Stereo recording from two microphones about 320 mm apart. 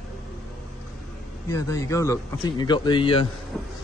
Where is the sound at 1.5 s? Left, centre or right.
Centre.